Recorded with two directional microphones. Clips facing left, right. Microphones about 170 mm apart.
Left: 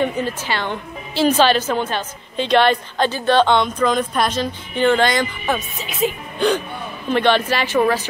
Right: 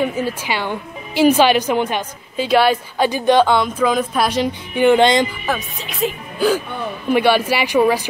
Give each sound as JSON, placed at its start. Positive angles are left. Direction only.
{"t": 0.0, "sound": "a woman's voice", "side_deg": -10}
{"t": 5.5, "sound": "a woman's voice", "side_deg": 0}